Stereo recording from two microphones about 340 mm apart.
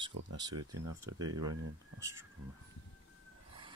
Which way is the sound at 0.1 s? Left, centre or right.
Right.